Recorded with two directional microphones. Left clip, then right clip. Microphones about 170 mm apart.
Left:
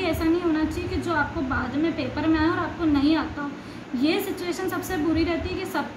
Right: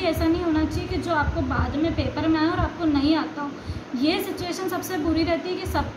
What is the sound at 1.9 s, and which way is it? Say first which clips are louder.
A woman's voice: right 1 dB; 5° right (ahead or behind).